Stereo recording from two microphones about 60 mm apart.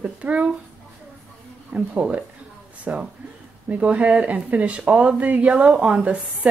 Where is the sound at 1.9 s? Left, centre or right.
Right.